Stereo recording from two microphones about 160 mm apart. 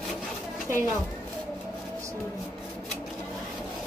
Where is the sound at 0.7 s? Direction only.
15° right (ahead or behind).